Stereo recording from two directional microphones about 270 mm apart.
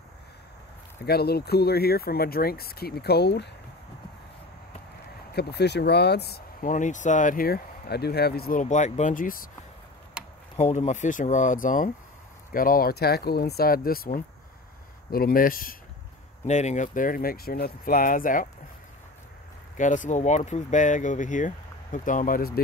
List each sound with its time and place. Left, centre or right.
1.0 s speech: left
5.3 s speech: left
10.5 s speech: left
19.8 s speech: left